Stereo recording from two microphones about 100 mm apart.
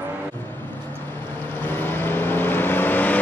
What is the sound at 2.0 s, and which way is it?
Vehicle, 20° left (ahead or behind).